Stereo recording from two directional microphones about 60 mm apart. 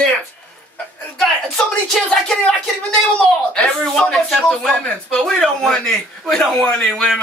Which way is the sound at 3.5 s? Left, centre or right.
Centre.